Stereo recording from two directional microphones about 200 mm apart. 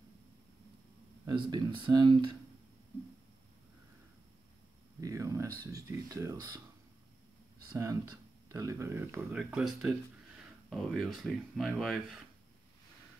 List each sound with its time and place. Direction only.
1.2 s speech: 20° right (ahead or behind)
5.0 s a sound: 15° right (ahead or behind)
5.7 s speech: 15° right (ahead or behind)
7.7 s speech: 15° right (ahead or behind)